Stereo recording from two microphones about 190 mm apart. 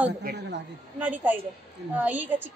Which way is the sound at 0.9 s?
10° right (ahead or behind).